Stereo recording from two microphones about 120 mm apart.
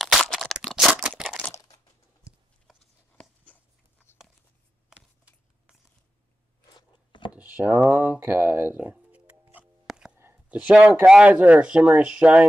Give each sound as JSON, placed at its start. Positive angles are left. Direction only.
{"t": 0.0, "sound": "a sound", "side_deg": 0}
{"t": 1.1, "sound": "crumpling", "side_deg": 0}
{"t": 1.5, "sound": "crumpling", "side_deg": 30}
{"t": 3.5, "sound": "dog", "side_deg": 15}
{"t": 4.9, "sound": "shuffling cards", "side_deg": -5}
{"t": 6.7, "sound": "a sound", "side_deg": 40}
{"t": 7.3, "sound": "speech", "side_deg": -10}
{"t": 9.4, "sound": "music", "side_deg": -15}
{"t": 9.8, "sound": "whispering", "side_deg": -5}
{"t": 10.1, "sound": "a sound", "side_deg": -20}
{"t": 10.6, "sound": "speech", "side_deg": -10}